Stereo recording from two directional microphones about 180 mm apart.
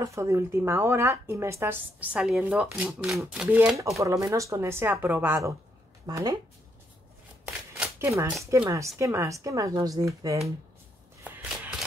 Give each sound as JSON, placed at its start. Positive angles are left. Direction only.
{"t": 0.0, "sound": "speech", "side_deg": -15}
{"t": 4.0, "sound": "speech", "side_deg": -20}
{"t": 7.8, "sound": "shuffling cards", "side_deg": -10}
{"t": 8.6, "sound": "speech", "side_deg": -15}